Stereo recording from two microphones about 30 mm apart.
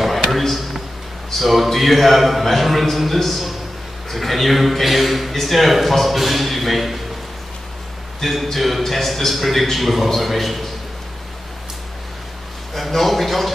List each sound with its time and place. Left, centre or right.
0.0 s a sound: centre
1.3 s a man's voice: centre
8.2 s a man's voice: centre
12.7 s a man's voice: centre